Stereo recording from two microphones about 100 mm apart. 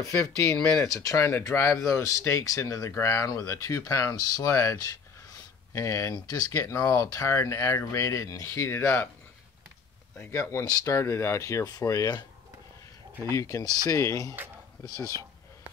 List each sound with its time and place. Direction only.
0.7 s speech: 25° left (ahead or behind)
10.1 s speech: 25° left (ahead or behind)
13.3 s speech: 30° left (ahead or behind)
15.1 s speech: 45° right (ahead or behind)